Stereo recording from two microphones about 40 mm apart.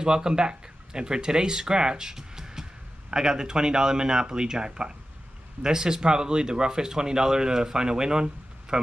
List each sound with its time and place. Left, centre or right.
0.0 s speech: right